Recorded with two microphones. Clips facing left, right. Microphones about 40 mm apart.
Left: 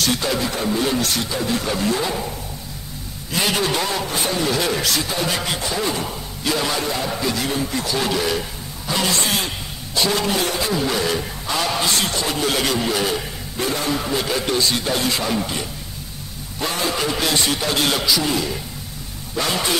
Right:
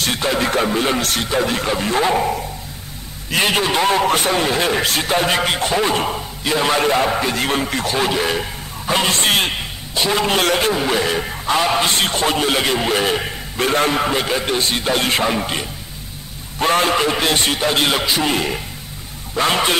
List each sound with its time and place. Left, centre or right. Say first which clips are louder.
0.0 s a man's voice: right 1 dB; right
0.4 s speech: right 6 dB; right
0.7 s speech: right 2 dB; right
1.7 s a man's voice: right 1 dB; right
2.0 s a man's voice: right 7 dB; right
4.0 s speech: right 6 dB; right
4.5 s a man's voice: right 3 dB; right
8.0 s a man's voice: right 3 dB; right
9.9 s a man's voice: right 2 dB; right
10.4 s a man's voice: right 6 dB; right
10.7 s a man's voice: right 3 dB; right
12.4 s a man's voice: right 3 dB; right
14.2 s a man's voice: right 1 dB; right